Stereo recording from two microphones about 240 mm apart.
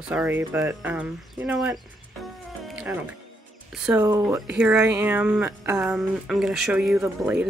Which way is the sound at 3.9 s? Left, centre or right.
Centre.